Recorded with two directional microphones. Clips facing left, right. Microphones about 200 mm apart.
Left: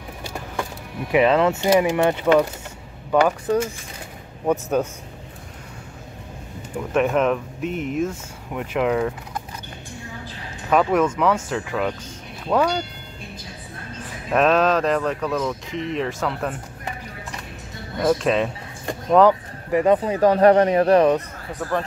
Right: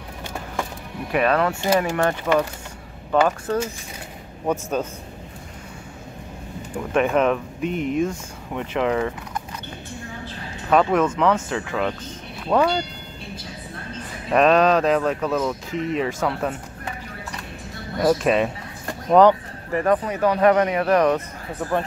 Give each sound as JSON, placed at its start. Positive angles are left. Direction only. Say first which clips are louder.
{"t": 1.1, "sound": "speech", "louder": "left 3 dB", "side_deg": 20}
{"t": 6.9, "sound": "speech", "louder": "even", "side_deg": 0}
{"t": 10.7, "sound": "speech", "louder": "even", "side_deg": 5}
{"t": 14.3, "sound": "speech", "louder": "right 1 dB", "side_deg": 0}
{"t": 17.9, "sound": "speech", "louder": "right 1 dB", "side_deg": -5}
{"t": 19.7, "sound": "speech", "louder": "left 3 dB", "side_deg": 15}
{"t": 20.0, "sound": "speech", "louder": "left 3 dB", "side_deg": 35}